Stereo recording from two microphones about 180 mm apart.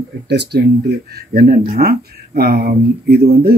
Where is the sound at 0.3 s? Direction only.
65° right (ahead or behind).